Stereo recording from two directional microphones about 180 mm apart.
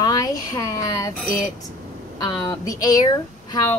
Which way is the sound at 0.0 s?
20° left (ahead or behind).